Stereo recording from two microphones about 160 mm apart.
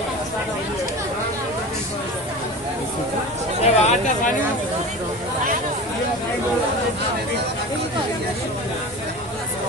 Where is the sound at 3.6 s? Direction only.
50° left (ahead or behind).